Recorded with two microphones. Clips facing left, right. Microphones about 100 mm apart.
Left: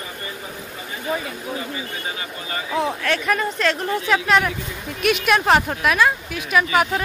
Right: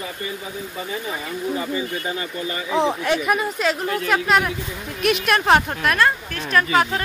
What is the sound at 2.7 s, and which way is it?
Speech, 20° right (ahead or behind).